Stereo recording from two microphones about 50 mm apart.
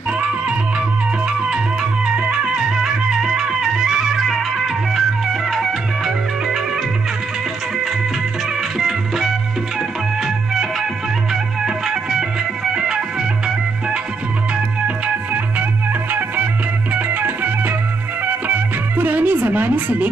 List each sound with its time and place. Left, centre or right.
0.2 s music: centre
8.7 s music: centre
16.1 s music: right